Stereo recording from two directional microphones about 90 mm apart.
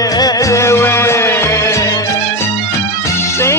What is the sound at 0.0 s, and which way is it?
Music, 45° left (ahead or behind).